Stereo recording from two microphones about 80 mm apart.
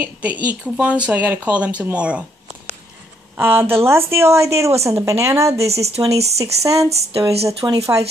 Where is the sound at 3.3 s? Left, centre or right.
Right.